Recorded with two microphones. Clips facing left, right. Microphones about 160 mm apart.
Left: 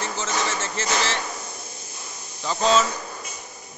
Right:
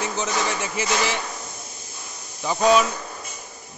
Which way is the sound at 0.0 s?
15° right (ahead or behind).